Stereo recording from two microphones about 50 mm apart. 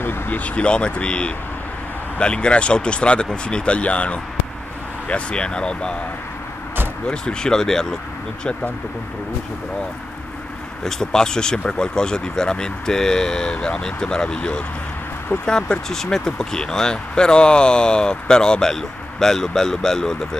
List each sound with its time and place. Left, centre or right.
0.0 s speech: left
0.4 s speech: left
7.1 s speech: centre
10.8 s speech: centre